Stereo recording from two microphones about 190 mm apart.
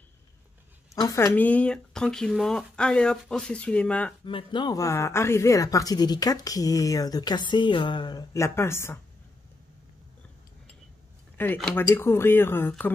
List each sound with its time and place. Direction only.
0.9 s speech: 15° left (ahead or behind)
4.2 s speech: 25° left (ahead or behind)
11.3 s speech: 10° left (ahead or behind)